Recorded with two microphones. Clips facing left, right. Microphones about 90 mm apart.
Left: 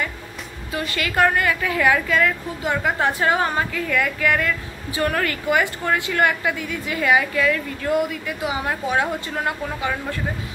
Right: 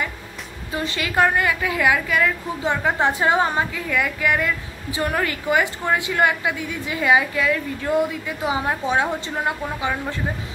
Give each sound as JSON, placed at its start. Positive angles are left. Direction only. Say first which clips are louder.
{"t": 0.7, "sound": "a woman's voice", "louder": "even", "side_deg": -20}